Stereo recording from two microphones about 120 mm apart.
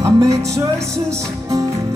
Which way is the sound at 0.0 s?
25° right (ahead or behind).